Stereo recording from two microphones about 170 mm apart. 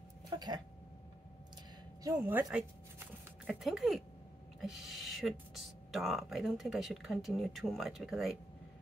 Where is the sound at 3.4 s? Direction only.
5° right (ahead or behind).